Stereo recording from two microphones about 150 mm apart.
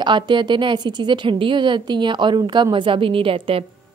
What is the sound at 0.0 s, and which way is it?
A woman's voice, 30° right (ahead or behind).